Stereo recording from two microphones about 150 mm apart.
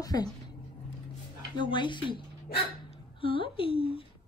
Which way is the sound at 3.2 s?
35° left (ahead or behind).